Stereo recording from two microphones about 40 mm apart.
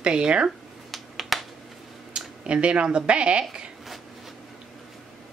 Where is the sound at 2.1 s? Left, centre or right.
Right.